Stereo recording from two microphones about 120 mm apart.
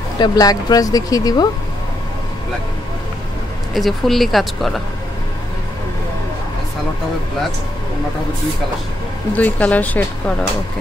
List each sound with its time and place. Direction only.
0.2 s speech: 35° left (ahead or behind)
3.7 s speech: centre (ahead or behind)
9.3 s speech: 10° left (ahead or behind)